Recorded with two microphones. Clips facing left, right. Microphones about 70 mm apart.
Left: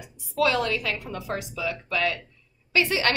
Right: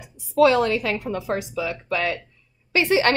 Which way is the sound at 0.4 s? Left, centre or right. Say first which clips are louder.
Right 7 dB; right.